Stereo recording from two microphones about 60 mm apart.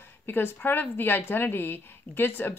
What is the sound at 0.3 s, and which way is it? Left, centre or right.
Speech, left.